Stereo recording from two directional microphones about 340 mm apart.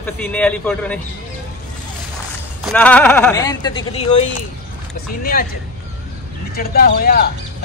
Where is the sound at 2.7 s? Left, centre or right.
Centre; by 5.5 s left.